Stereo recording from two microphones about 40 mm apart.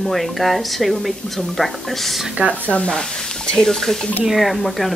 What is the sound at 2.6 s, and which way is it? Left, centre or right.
Speech, left.